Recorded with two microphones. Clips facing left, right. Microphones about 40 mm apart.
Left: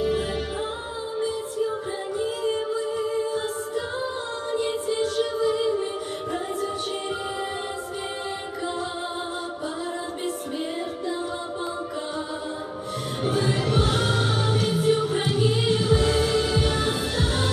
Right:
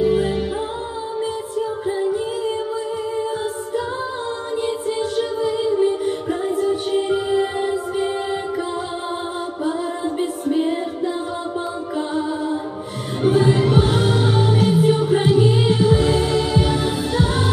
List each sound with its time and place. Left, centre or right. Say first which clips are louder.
0.0 s music: right 7 dB; centre
5.0 s music: right 2 dB; centre
5.5 s music: right 6 dB; centre
10.2 s music: right 10 dB; right
13.2 s music: right 9 dB; right
13.8 s music: right 5 dB; centre